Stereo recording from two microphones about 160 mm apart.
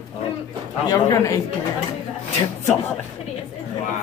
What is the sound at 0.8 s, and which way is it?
Speech, 20° left (ahead or behind).